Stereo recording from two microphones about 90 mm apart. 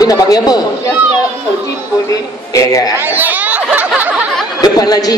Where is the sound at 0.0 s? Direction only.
45° left (ahead or behind).